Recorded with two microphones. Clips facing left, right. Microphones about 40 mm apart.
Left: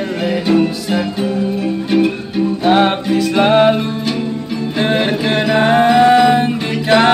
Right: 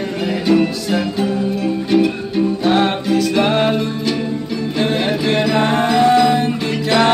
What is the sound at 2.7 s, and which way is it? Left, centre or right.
Music, left.